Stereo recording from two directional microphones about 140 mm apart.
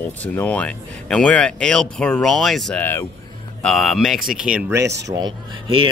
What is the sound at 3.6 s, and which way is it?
Speech, 5° left (ahead or behind).